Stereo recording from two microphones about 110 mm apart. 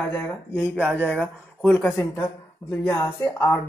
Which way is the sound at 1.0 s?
10° right (ahead or behind).